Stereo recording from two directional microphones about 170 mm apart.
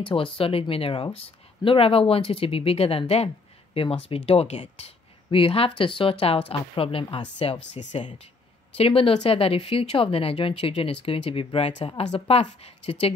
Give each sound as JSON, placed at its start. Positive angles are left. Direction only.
{"t": 0.0, "sound": "speech", "side_deg": 30}
{"t": 8.0, "sound": "speech", "side_deg": 30}